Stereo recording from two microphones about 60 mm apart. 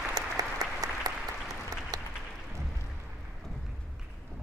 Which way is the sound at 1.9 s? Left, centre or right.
Right.